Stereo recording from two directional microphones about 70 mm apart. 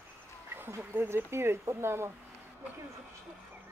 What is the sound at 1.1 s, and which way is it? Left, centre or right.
Speech, right.